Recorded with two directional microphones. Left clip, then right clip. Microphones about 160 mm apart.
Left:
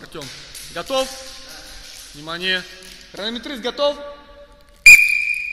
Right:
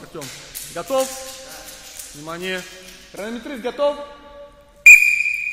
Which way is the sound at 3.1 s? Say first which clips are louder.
Left 3 dB; 25° left (ahead or behind).